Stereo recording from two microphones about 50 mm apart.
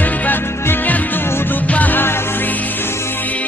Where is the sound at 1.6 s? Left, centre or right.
Left.